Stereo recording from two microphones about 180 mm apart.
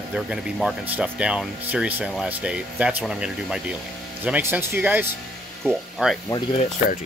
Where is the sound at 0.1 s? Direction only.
5° right (ahead or behind).